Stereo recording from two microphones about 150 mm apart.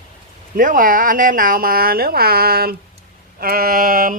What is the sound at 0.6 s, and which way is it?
A woman's voice, 65° right (ahead or behind).